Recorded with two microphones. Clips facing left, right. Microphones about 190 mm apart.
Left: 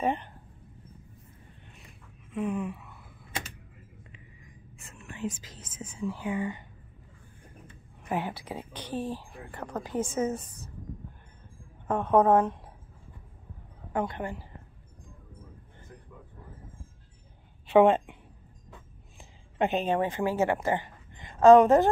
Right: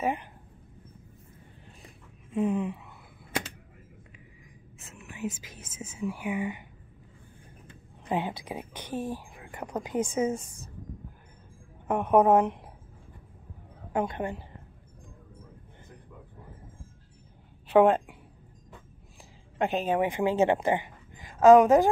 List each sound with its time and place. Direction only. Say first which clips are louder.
0.0 s speech: left 1 dB; 10° right (ahead or behind)
2.3 s a sound: right 4 dB; 25° right (ahead or behind)
4.9 s speech: even; 5° right (ahead or behind)
8.0 s speech: right 2 dB; 20° right (ahead or behind)
11.9 s speech: right 1 dB; 10° right (ahead or behind)
13.9 s speech: right 2 dB; 20° right (ahead or behind)
17.7 s a woman's voice: even; centre (ahead or behind)
19.6 s a woman's voice: even; centre (ahead or behind)
20.0 s speech: right 2 dB; 15° right (ahead or behind)
21.2 s a woman's voice: even; 5° right (ahead or behind)